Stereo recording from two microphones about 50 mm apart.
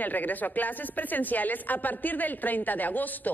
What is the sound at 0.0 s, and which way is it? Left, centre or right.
Speech, left.